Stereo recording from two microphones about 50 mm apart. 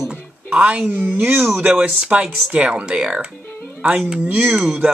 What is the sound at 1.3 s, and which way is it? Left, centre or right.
Speech, centre.